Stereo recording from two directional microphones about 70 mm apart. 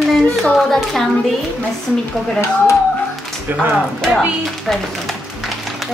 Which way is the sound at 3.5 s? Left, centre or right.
Right.